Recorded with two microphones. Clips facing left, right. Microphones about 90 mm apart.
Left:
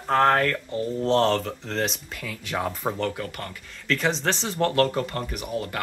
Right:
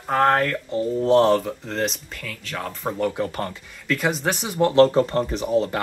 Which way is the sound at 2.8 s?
5° right (ahead or behind).